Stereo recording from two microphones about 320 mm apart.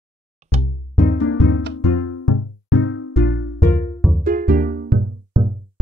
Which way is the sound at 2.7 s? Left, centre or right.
Left.